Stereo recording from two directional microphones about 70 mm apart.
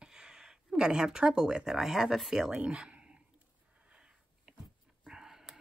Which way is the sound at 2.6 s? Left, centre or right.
Centre.